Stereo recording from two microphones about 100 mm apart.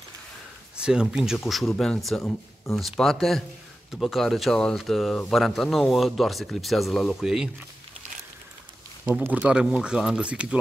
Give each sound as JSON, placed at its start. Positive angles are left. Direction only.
{"t": 0.7, "sound": "speech", "side_deg": -10}
{"t": 9.2, "sound": "speech", "side_deg": -15}